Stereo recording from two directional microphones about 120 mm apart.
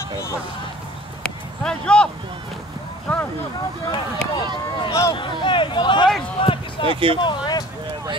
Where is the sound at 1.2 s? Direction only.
5° left (ahead or behind).